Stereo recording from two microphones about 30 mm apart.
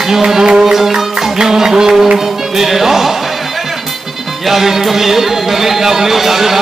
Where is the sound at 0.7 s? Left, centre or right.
Centre.